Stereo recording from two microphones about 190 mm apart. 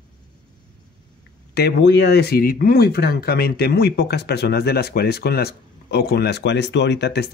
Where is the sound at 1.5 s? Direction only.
60° left (ahead or behind).